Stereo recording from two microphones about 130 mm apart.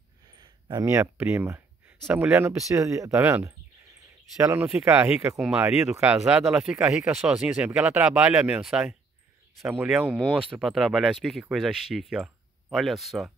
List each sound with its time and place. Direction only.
0.4 s a sound: 35° right (ahead or behind)
0.8 s speech: 20° right (ahead or behind)
4.5 s speech: 10° right (ahead or behind)
9.6 s speech: 20° right (ahead or behind); by 13.3 s centre (ahead or behind)